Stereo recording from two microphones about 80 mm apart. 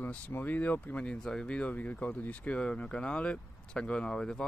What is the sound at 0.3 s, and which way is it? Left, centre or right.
Speech, left.